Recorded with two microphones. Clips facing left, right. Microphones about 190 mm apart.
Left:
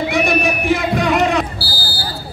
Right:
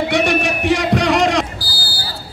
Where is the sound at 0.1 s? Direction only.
75° right (ahead or behind).